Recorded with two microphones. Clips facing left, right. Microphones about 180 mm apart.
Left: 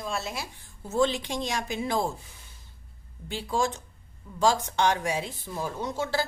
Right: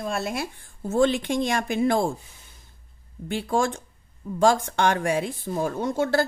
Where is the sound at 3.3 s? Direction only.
55° right (ahead or behind).